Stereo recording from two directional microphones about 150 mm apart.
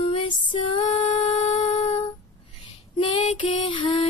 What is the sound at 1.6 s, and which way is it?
Humming, 35° left (ahead or behind).